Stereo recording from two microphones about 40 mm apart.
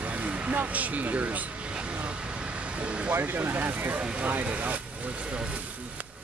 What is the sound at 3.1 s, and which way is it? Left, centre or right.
Speech, right.